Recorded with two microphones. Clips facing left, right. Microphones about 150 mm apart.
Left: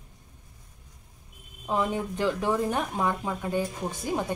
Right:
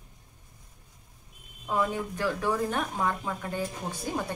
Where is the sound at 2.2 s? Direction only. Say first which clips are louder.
Left 2 dB; 20° left (ahead or behind).